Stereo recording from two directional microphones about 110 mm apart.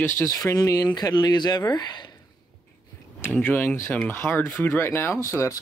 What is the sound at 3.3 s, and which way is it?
Speech, 15° left (ahead or behind).